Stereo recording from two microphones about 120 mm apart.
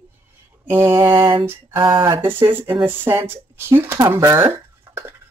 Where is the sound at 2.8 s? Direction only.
15° right (ahead or behind).